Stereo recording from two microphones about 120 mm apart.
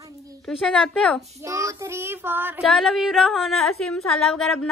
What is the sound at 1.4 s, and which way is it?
Child singing, 25° right (ahead or behind).